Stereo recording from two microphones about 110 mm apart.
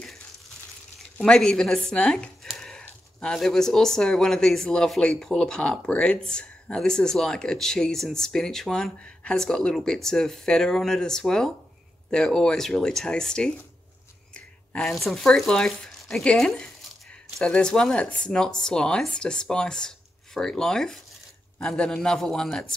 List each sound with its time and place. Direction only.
1.1 s speech: 5° left (ahead or behind)